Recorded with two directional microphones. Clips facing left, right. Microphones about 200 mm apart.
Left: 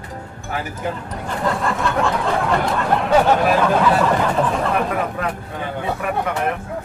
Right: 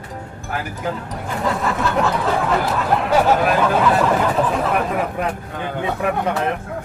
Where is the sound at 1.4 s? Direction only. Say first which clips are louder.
Even; 5° right (ahead or behind).